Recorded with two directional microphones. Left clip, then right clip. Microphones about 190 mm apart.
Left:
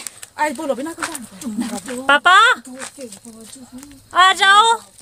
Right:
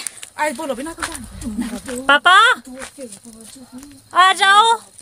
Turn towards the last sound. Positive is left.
turn(degrees=0)  # may be behind; listen again after turning